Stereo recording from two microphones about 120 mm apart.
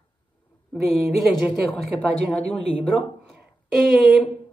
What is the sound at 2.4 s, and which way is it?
Speech, 50° left (ahead or behind).